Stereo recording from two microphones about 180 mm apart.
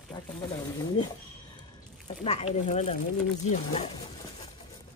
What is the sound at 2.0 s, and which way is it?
Speech, 35° left (ahead or behind).